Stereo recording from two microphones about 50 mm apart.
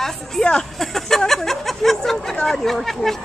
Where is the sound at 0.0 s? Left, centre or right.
Centre.